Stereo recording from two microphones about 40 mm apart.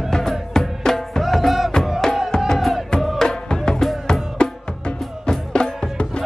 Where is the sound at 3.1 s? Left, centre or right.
Centre.